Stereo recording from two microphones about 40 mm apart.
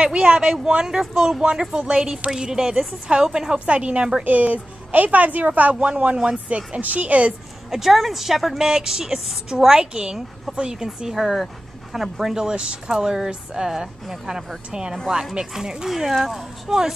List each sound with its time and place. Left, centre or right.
0.0 s a woman's voice: right
3.5 s speech: right
4.2 s a woman's voice: right
5.8 s speech: right
6.8 s speech: right
7.7 s a woman's voice: centre